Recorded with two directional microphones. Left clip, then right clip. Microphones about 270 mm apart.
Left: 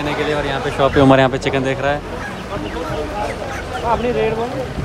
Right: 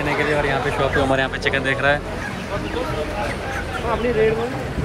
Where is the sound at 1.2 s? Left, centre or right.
Centre.